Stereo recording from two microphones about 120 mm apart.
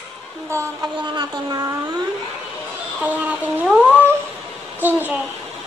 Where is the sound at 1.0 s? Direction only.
35° right (ahead or behind).